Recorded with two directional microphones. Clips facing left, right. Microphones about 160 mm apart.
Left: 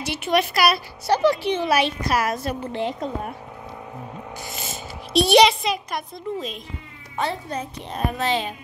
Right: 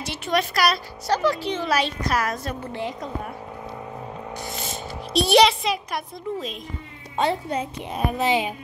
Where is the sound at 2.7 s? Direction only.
25° left (ahead or behind).